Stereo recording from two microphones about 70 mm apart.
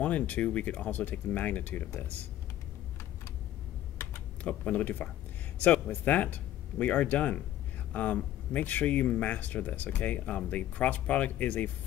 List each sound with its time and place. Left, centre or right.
0.0 s speech: left
4.4 s speech: left